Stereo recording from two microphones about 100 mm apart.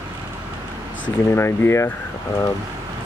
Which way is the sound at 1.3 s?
25° left (ahead or behind).